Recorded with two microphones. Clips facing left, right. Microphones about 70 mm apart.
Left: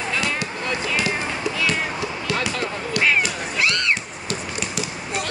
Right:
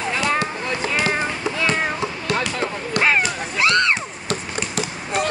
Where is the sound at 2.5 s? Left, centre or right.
Right.